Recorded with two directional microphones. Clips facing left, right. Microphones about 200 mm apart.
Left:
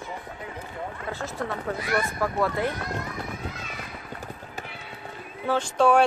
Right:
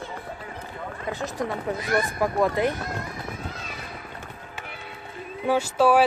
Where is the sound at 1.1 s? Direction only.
15° right (ahead or behind).